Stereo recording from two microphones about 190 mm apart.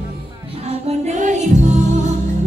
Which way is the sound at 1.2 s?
40° right (ahead or behind).